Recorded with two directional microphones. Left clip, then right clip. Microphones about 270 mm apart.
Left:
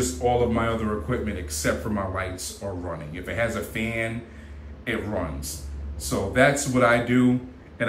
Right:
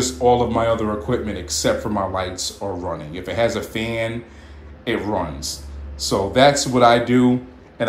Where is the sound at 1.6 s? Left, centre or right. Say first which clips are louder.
Right 6 dB; centre.